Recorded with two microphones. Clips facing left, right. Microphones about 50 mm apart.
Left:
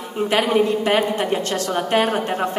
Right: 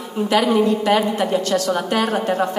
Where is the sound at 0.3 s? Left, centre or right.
Left.